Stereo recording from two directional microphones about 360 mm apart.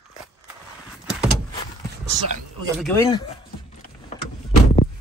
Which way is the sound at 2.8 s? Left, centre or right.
Centre.